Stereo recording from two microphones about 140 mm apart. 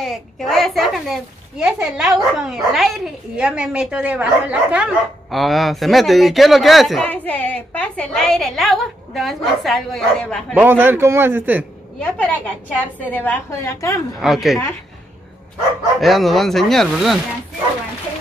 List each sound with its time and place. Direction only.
0.0 s a child's voice: centre (ahead or behind)
7.1 s a child's voice: 10° left (ahead or behind)
10.5 s a man's voice: 15° right (ahead or behind)
12.0 s a woman's voice: 10° left (ahead or behind)
14.2 s a child's voice: centre (ahead or behind)
16.0 s a child's voice: centre (ahead or behind)